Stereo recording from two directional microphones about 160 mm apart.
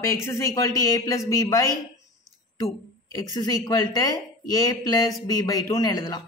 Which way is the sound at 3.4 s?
20° left (ahead or behind).